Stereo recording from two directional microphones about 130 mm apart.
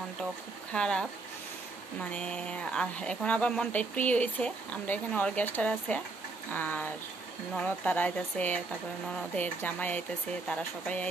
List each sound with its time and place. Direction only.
0.7 s speech: 5° left (ahead or behind)